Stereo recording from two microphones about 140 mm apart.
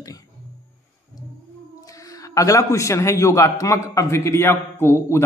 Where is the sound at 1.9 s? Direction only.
25° left (ahead or behind).